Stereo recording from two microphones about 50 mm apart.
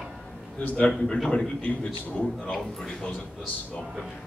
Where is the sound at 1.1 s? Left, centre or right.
Left.